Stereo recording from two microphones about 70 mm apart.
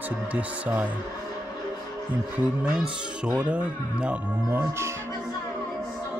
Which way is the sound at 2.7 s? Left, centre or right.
Centre.